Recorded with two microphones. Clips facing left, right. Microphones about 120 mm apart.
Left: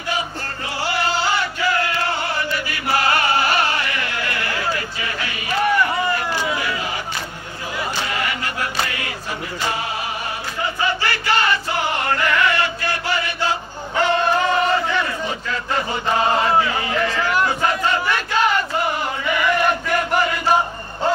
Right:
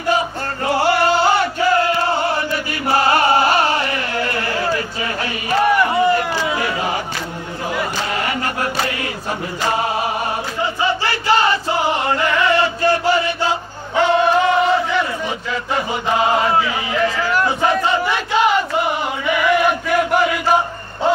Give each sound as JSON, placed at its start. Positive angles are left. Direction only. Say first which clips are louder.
{"t": 0.7, "sound": "music", "louder": "right 8 dB", "side_deg": -55}
{"t": 1.3, "sound": "music", "louder": "right 5 dB", "side_deg": -30}
{"t": 8.1, "sound": "chant", "louder": "right 3 dB", "side_deg": -40}
{"t": 9.7, "sound": "music", "louder": "right 7 dB", "side_deg": -50}
{"t": 10.2, "sound": "choir", "louder": "right 4 dB", "side_deg": -25}
{"t": 13.9, "sound": "crowd", "louder": "right 4 dB", "side_deg": -5}
{"t": 15.2, "sound": "chant", "louder": "right 2 dB", "side_deg": -10}
{"t": 17.5, "sound": "a sound", "louder": "right 3 dB", "side_deg": -25}
{"t": 17.8, "sound": "battle cry", "louder": "right 2 dB", "side_deg": -25}
{"t": 19.2, "sound": "chant", "louder": "right 3 dB", "side_deg": -5}